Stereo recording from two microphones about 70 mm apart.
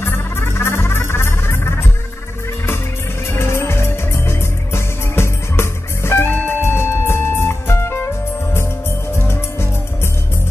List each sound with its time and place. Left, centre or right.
0.0 s music: left
3.3 s music: left
9.1 s music: left